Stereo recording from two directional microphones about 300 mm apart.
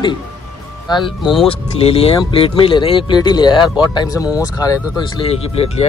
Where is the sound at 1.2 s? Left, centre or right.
Centre.